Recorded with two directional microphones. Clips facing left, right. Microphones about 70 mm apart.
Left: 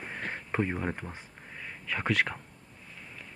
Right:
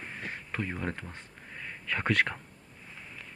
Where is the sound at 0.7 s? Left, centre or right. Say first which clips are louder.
Left 2 dB; centre.